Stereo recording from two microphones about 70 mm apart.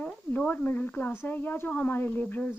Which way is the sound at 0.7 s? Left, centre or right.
Left.